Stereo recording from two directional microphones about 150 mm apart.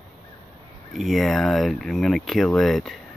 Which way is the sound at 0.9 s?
Centre (ahead or behind).